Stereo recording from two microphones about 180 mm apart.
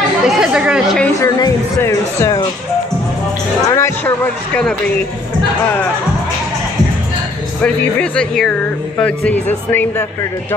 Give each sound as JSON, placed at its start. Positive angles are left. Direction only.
{"t": 0.4, "sound": "speech", "side_deg": -5}
{"t": 1.0, "sound": "speech", "side_deg": 15}
{"t": 3.6, "sound": "speech", "side_deg": 15}
{"t": 7.6, "sound": "speech", "side_deg": 5}